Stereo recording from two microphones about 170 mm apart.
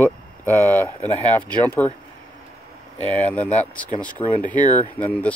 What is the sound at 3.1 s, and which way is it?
Speech, 10° left (ahead or behind).